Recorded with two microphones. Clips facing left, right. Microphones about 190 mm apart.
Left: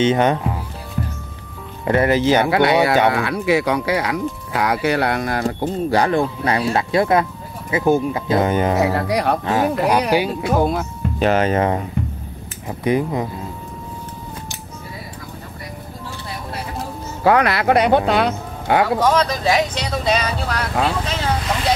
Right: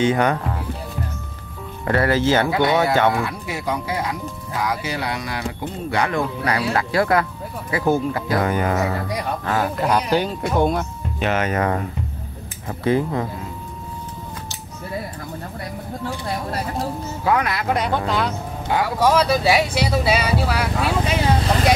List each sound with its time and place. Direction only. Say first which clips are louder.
0.0 s speech: left 2 dB; 20° left (ahead or behind)
1.9 s speech: left 3 dB; 20° left (ahead or behind)
2.4 s speech: left 3 dB; 70° left (ahead or behind); by 8.7 s 20° left (ahead or behind)
8.9 s speech: left 6 dB; 75° left (ahead or behind)
9.5 s speech: left 1 dB; 15° left (ahead or behind)
11.1 s speech: left 4 dB; 35° left (ahead or behind); by 13.3 s 15° left (ahead or behind)
17.2 s speech: left 5 dB; 75° left (ahead or behind)
18.9 s speech: even; 10° right (ahead or behind)